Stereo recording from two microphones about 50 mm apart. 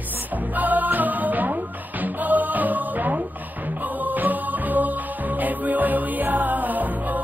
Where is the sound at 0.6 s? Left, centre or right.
Right.